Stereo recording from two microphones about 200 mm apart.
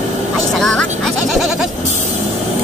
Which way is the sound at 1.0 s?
Centre (ahead or behind).